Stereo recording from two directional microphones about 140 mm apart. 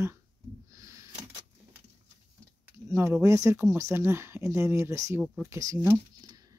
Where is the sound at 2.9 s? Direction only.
20° right (ahead or behind).